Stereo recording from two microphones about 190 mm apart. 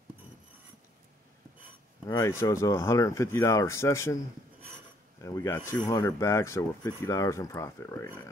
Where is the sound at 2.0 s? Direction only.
20° left (ahead or behind).